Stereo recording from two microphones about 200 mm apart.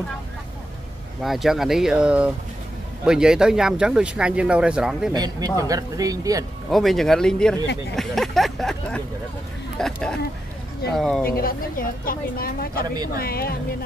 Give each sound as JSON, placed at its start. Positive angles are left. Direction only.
{"t": 1.2, "sound": "speech", "side_deg": 0}
{"t": 5.1, "sound": "speech", "side_deg": -20}
{"t": 6.7, "sound": "speech", "side_deg": 0}
{"t": 11.2, "sound": "speech", "side_deg": 45}